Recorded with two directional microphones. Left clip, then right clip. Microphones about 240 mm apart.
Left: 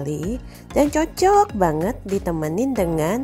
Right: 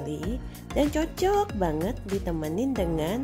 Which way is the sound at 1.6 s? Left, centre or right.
Left.